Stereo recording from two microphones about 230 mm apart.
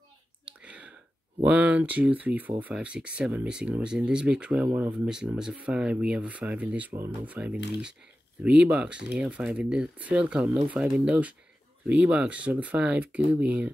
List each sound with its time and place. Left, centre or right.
0.5 s clicking: centre
1.4 s speech: centre
6.9 s speech: centre
7.2 s speech: centre